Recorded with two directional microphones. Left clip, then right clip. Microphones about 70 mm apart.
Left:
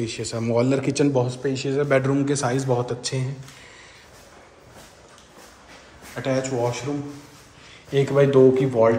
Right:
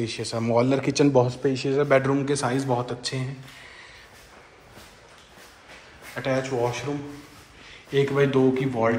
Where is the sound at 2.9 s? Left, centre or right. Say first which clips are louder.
Left 2 dB; left.